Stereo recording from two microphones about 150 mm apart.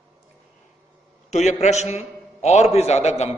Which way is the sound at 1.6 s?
50° left (ahead or behind).